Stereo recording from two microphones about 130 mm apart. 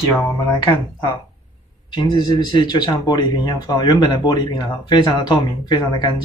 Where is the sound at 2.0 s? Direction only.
35° left (ahead or behind).